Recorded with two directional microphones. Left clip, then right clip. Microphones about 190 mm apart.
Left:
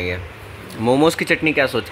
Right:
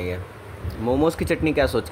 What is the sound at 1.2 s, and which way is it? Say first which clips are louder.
Speech: left 4 dB; 5° right (ahead or behind).